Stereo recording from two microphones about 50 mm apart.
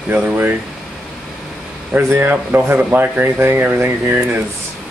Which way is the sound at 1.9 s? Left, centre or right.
Right.